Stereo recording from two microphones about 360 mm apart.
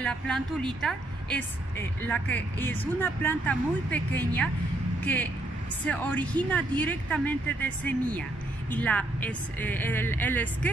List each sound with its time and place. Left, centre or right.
0.0 s a woman's voice: centre